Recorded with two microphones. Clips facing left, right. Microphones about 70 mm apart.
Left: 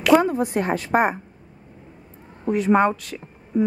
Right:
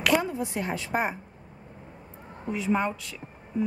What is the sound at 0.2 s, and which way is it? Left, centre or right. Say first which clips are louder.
Speech: left 9 dB; left.